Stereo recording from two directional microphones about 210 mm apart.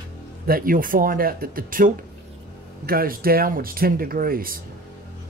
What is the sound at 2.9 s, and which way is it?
Speech, 45° right (ahead or behind).